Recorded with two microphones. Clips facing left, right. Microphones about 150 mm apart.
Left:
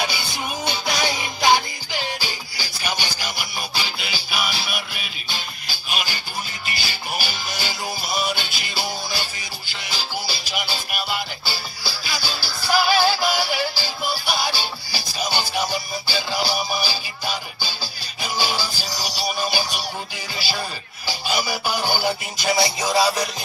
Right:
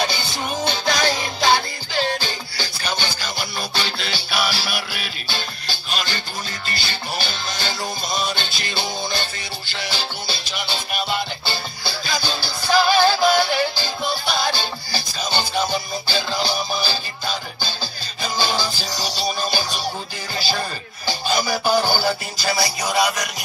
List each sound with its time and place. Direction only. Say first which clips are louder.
0.7 s music: right 3 dB; 10° left (ahead or behind)
21.1 s music: right 3 dB; 10° left (ahead or behind); by 23.2 s 30° left (ahead or behind)